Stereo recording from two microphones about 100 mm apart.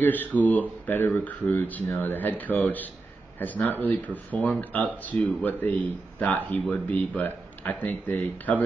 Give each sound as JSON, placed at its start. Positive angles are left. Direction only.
{"t": 0.0, "sound": "speech", "side_deg": 15}